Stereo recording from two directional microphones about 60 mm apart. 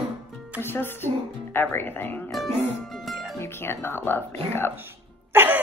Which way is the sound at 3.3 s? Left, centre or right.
Left.